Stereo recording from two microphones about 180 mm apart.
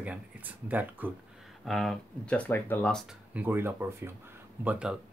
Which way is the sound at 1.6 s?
Centre (ahead or behind).